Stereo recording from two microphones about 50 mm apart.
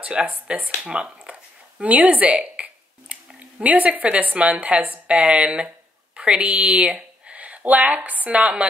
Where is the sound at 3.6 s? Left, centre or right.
Right; by 7.0 s centre.